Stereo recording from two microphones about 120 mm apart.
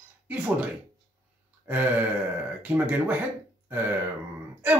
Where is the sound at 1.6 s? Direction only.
15° right (ahead or behind).